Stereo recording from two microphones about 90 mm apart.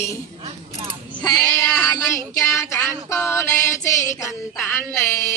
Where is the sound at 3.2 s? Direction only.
30° left (ahead or behind).